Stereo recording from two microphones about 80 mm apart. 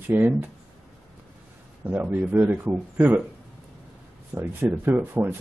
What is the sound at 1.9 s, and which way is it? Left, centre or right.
Speech, right.